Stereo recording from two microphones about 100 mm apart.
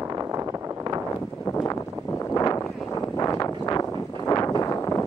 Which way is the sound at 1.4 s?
25° left (ahead or behind).